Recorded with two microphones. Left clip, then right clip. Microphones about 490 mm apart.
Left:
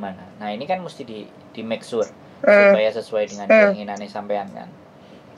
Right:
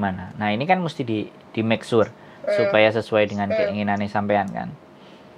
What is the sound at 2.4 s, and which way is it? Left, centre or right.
Speech, left.